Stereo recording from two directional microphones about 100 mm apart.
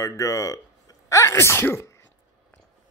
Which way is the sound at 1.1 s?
30° left (ahead or behind).